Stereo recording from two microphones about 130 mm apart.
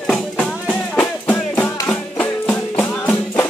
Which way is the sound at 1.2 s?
20° left (ahead or behind).